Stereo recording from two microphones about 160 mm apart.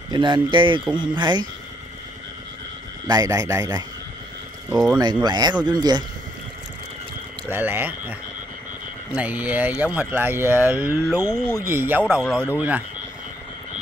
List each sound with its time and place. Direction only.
0.1 s a man's voice: 30° right (ahead or behind)
3.1 s a man's voice: 25° right (ahead or behind)
4.6 s speech: 5° right (ahead or behind)
5.2 s a man's voice: 25° right (ahead or behind)
7.4 s speech: 10° right (ahead or behind)
11.5 s speech: 15° right (ahead or behind)